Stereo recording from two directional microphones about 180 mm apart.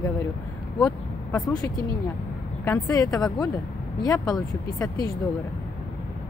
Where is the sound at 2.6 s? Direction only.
15° left (ahead or behind).